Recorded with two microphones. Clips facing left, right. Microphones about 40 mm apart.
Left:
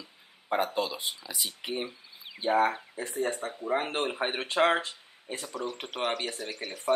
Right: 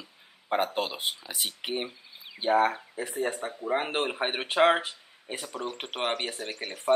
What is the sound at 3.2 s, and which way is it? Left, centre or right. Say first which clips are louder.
Speech: even; centre.